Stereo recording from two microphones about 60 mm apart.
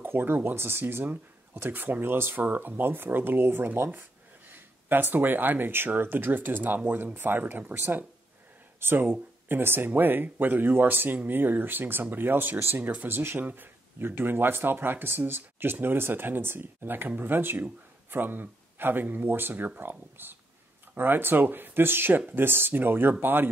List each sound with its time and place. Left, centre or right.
0.0 s speech: right